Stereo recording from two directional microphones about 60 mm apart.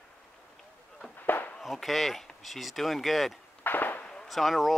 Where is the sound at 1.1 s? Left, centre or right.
Left.